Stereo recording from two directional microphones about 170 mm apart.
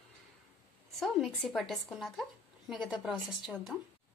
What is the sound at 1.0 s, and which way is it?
A woman's voice, centre (ahead or behind).